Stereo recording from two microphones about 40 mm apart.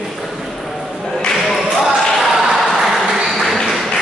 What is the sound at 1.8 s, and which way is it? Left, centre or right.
Ping, centre.